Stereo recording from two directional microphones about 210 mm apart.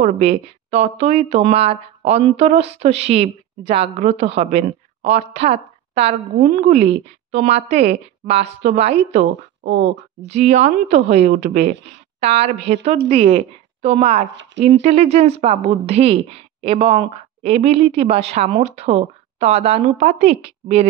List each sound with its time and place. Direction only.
0.0 s speech: 30° right (ahead or behind)
9.6 s speech: 55° right (ahead or behind)
10.2 s speech: 35° right (ahead or behind)